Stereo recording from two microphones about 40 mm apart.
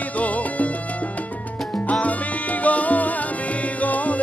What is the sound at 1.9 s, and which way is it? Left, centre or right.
Music, left.